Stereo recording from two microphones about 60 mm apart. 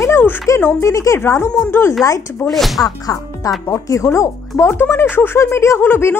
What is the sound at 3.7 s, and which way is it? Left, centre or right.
Speech, left.